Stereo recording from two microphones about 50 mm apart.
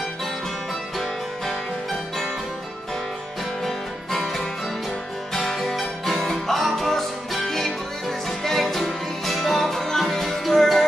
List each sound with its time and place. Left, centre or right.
0.9 s music: centre
4.2 s music: centre